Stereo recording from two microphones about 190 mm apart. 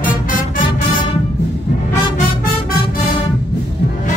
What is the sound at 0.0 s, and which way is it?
Music, 45° left (ahead or behind).